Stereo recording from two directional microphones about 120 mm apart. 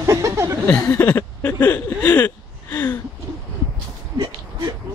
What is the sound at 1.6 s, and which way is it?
Speech, 15° left (ahead or behind).